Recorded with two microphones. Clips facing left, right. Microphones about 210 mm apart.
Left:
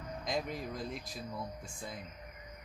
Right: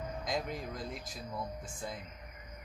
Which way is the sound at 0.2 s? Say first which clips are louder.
Left 1 dB; centre (ahead or behind).